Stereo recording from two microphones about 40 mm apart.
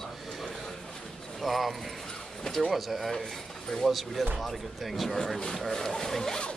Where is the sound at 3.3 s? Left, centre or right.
Centre.